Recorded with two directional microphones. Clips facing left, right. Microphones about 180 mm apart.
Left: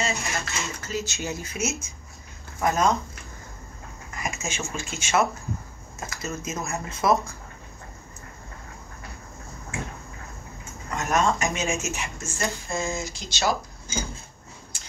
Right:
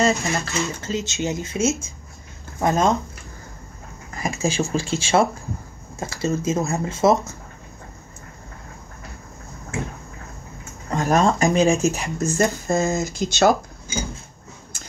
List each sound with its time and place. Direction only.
0.0 s speech: 35° right (ahead or behind)
4.1 s speech: 30° right (ahead or behind)
10.9 s speech: 30° right (ahead or behind); by 13.5 s 50° right (ahead or behind)